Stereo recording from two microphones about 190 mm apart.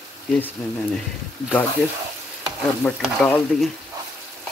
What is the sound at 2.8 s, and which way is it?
Speech, 5° left (ahead or behind).